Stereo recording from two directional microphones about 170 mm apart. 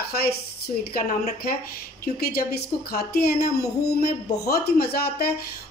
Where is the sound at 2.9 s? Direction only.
65° left (ahead or behind).